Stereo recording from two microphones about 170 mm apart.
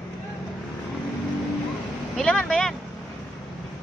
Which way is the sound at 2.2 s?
5° left (ahead or behind).